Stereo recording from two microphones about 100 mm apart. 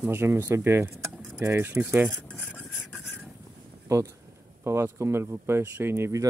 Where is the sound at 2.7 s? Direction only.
5° right (ahead or behind).